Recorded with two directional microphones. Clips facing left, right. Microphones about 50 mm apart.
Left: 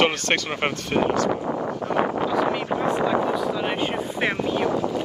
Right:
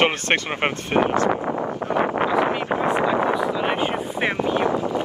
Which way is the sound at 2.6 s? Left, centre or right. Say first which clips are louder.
Right 2 dB; right.